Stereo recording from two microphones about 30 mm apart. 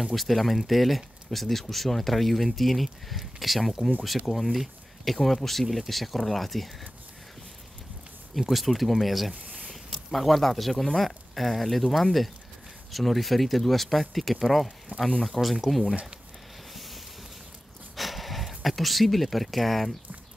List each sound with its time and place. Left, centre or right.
0.1 s speech: centre
8.4 s speech: centre
9.3 s a sound: right
9.7 s zipper: centre
10.1 s speech: centre
14.9 s speech: right
15.4 s speech: centre
16.7 s a sound: centre
17.9 s speech: centre